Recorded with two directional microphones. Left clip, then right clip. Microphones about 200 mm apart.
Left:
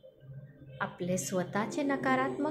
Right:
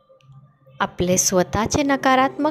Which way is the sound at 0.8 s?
45° right (ahead or behind).